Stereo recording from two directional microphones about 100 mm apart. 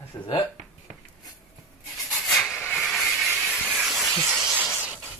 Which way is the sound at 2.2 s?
Centre (ahead or behind).